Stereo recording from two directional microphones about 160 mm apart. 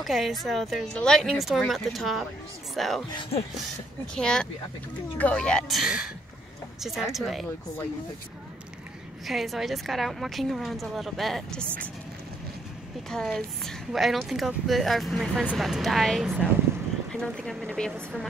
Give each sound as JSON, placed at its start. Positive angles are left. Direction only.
{"t": 0.0, "sound": "a woman's voice", "side_deg": 0}
{"t": 3.1, "sound": "speech", "side_deg": 35}
{"t": 4.1, "sound": "a woman's voice", "side_deg": 5}
{"t": 9.2, "sound": "a woman's voice", "side_deg": 0}
{"t": 13.1, "sound": "a woman's voice", "side_deg": 0}